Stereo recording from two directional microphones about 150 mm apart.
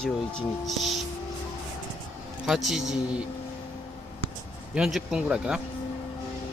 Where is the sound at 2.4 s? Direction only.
Centre (ahead or behind).